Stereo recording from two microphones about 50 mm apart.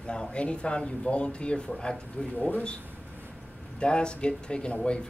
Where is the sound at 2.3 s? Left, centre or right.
Left.